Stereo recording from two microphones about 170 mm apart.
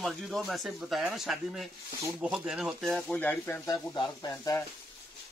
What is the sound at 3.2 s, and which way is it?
Speech, 10° left (ahead or behind).